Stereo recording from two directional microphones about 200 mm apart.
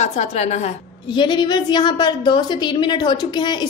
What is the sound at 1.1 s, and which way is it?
A woman's voice, 20° left (ahead or behind).